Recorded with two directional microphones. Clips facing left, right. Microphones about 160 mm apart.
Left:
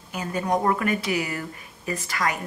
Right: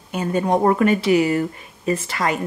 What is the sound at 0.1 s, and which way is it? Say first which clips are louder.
Speech: right 6 dB; 25° right (ahead or behind).